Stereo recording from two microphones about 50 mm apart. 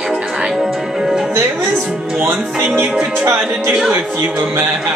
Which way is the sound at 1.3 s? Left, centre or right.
Right.